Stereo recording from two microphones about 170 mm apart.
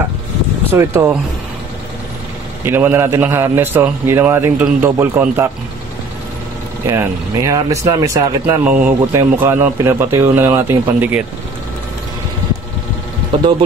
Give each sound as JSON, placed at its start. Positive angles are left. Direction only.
{"t": 0.7, "sound": "a man's voice", "side_deg": -15}
{"t": 2.6, "sound": "a man's voice", "side_deg": -10}
{"t": 6.9, "sound": "a man's voice", "side_deg": -15}